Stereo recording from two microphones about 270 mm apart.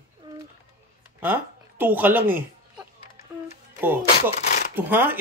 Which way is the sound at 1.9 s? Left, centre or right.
Centre.